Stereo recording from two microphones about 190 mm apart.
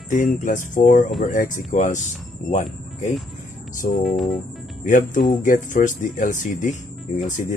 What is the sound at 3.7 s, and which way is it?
Music, 45° left (ahead or behind).